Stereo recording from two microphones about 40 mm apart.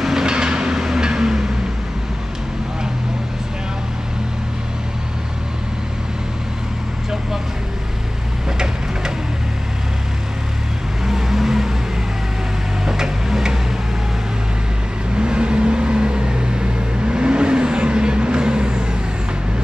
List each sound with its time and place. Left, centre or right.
0.0 s vehicle: centre
11.1 s vehicle: centre
12.8 s tick-tock: centre
15.1 s vehicle: right